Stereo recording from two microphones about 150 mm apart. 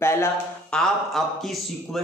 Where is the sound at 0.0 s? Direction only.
15° left (ahead or behind).